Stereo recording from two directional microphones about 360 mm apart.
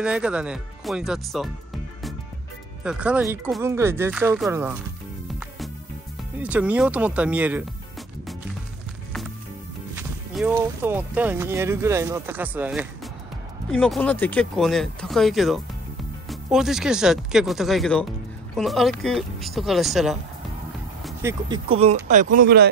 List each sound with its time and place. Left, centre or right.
0.0 s speech: centre
2.8 s speech: centre
6.4 s speech: centre
9.9 s speech: centre
21.0 s music: centre
21.7 s speech: centre